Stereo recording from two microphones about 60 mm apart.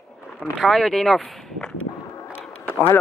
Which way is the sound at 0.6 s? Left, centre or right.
Centre.